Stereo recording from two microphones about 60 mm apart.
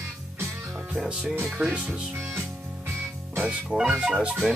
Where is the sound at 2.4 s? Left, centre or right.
Right.